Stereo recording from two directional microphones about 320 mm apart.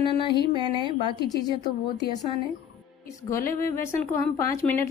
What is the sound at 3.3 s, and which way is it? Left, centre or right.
Speech, centre.